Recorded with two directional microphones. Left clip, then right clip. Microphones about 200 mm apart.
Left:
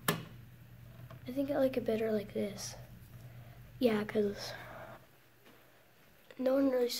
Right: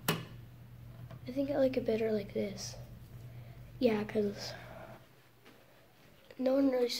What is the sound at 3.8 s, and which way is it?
A woman's voice, 5° left (ahead or behind).